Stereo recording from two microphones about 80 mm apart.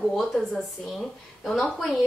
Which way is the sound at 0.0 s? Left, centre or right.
Centre.